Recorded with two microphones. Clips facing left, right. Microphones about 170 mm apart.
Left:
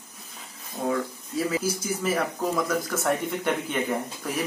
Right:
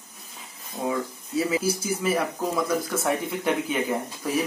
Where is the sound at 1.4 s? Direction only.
5° right (ahead or behind).